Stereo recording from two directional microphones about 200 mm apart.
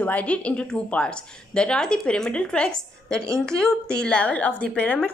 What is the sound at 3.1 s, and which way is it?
Speech, 15° right (ahead or behind).